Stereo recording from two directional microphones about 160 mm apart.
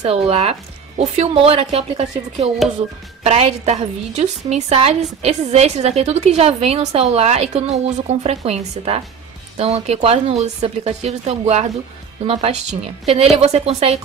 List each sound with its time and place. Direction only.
0.0 s a woman's voice: 40° right (ahead or behind)